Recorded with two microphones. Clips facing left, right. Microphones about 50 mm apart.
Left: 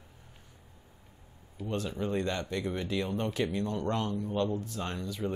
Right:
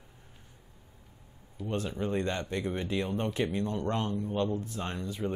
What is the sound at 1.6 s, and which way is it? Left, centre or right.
Speech, right.